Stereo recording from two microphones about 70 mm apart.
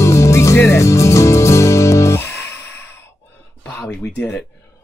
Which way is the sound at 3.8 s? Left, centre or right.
Centre.